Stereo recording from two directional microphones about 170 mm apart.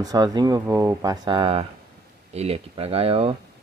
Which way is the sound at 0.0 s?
20° right (ahead or behind).